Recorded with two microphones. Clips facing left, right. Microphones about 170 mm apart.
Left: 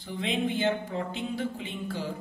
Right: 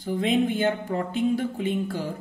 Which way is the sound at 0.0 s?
45° right (ahead or behind).